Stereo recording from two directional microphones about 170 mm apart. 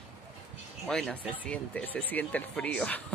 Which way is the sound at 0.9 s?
5° left (ahead or behind).